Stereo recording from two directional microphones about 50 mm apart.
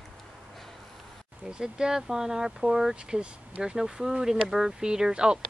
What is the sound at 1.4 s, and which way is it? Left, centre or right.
Speech, centre.